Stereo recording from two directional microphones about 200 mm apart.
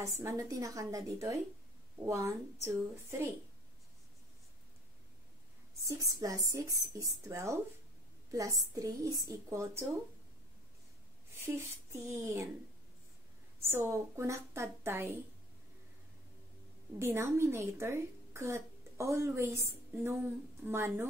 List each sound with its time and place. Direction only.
0.2 s a woman's voice: 15° right (ahead or behind)
5.9 s a woman's voice: 15° right (ahead or behind)
11.3 s a woman's voice: 15° right (ahead or behind)
13.6 s a woman's voice: 10° right (ahead or behind)
17.0 s a woman's voice: 15° right (ahead or behind)